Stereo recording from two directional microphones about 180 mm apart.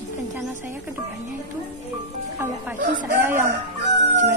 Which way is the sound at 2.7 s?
45° right (ahead or behind).